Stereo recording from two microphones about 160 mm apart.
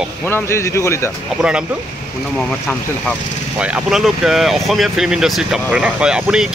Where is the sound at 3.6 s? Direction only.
5° right (ahead or behind).